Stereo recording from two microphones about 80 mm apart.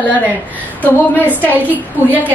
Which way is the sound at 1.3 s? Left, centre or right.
Left.